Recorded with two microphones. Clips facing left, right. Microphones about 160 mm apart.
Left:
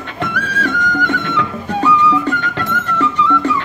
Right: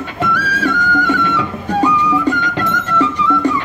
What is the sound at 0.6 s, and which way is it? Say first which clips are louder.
Music: right 1 dB; 10° right (ahead or behind).